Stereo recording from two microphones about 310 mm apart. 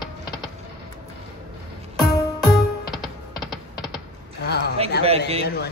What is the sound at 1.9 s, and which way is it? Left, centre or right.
Music, centre.